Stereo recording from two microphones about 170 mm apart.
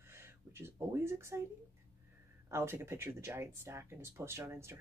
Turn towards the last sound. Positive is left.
turn(degrees=-15)  # may be behind; listen again after turning